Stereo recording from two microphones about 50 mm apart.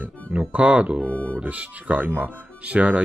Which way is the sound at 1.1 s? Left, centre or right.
Left.